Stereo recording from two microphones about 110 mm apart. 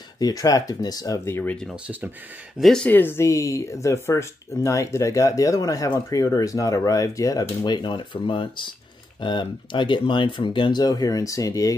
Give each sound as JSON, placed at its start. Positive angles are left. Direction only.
{"t": 0.2, "sound": "speech", "side_deg": 30}
{"t": 2.6, "sound": "speech", "side_deg": 5}
{"t": 2.9, "sound": "speech", "side_deg": 20}